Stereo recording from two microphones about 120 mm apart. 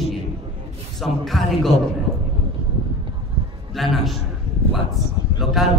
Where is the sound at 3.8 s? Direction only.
Centre (ahead or behind).